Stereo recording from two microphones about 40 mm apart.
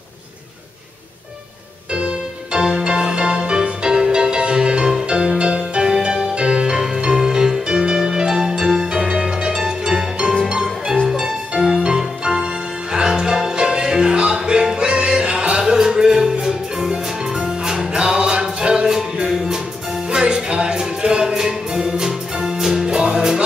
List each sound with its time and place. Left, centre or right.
2.0 s music: right